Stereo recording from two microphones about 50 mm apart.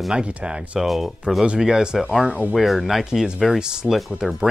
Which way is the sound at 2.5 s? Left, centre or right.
Centre.